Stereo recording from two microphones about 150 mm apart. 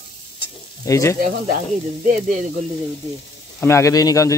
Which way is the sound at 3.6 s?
20° left (ahead or behind).